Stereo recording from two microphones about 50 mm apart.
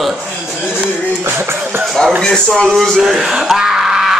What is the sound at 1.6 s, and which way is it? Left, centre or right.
Speech, right.